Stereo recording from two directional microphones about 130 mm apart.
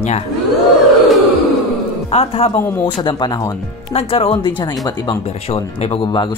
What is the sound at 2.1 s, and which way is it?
Speech, 50° left (ahead or behind).